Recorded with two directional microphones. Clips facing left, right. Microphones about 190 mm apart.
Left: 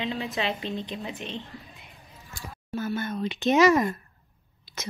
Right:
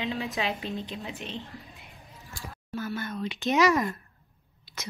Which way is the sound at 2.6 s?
25° left (ahead or behind).